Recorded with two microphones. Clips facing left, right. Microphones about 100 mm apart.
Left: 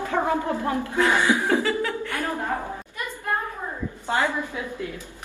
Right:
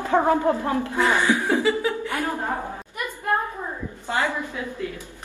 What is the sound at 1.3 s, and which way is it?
Chuckle, 20° left (ahead or behind).